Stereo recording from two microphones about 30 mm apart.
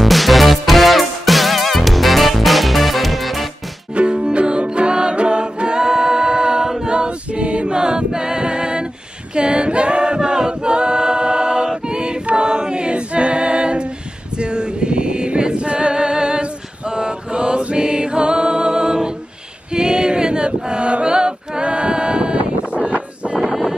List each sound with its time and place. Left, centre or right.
0.0 s music: centre
3.9 s music: right
6.9 s choir: right
9.3 s a capella: right
14.4 s choir: right
21.1 s a capella: right
23.4 s a sound: centre